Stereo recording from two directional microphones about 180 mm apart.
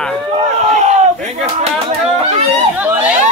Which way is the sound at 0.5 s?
40° right (ahead or behind).